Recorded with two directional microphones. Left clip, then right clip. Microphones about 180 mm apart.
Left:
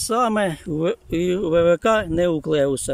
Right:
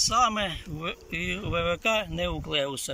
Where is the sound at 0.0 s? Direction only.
85° left.